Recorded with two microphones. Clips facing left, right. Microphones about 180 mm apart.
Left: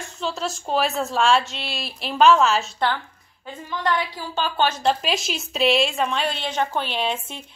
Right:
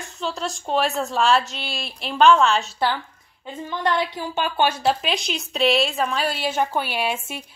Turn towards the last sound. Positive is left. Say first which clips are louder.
# right 1 dB
turn(degrees=-10)  # may be behind; listen again after turning